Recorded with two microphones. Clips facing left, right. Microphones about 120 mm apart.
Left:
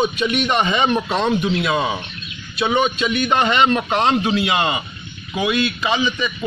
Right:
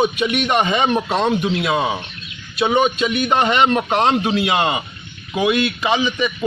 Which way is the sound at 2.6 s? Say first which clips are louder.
Right 2 dB; 45° right (ahead or behind).